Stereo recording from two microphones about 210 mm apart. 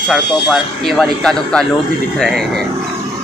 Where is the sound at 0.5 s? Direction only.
Centre (ahead or behind).